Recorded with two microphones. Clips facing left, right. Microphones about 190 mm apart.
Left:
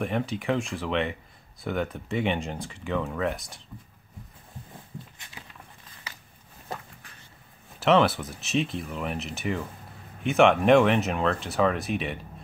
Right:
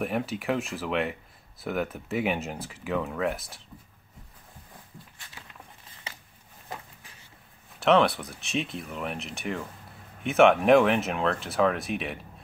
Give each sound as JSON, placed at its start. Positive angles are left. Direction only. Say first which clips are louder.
{"t": 0.0, "sound": "speech", "louder": "left 1 dB", "side_deg": -5}
{"t": 6.1, "sound": "a sound", "louder": "right 2 dB", "side_deg": -25}
{"t": 7.8, "sound": "speech", "louder": "even", "side_deg": 0}